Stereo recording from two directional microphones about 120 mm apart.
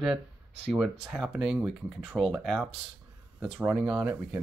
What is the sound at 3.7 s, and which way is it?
Speech, 5° right (ahead or behind).